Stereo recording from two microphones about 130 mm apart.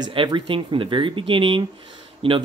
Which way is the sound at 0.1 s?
40° right (ahead or behind).